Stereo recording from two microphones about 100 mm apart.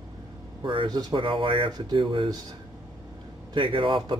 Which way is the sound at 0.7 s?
50° right (ahead or behind).